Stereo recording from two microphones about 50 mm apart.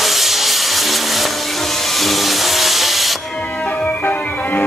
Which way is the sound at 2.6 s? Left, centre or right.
Centre.